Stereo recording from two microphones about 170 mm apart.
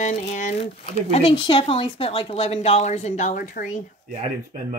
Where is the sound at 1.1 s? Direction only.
30° left (ahead or behind); by 3.8 s 50° left (ahead or behind).